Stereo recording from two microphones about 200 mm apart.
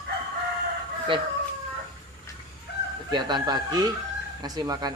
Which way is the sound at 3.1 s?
20° right (ahead or behind).